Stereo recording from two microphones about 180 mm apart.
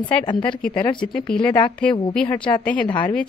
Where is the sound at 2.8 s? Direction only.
25° left (ahead or behind).